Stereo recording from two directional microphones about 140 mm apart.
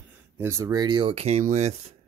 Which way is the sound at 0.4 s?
20° right (ahead or behind).